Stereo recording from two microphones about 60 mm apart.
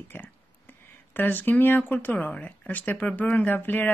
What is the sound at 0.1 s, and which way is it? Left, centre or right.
Speech, left.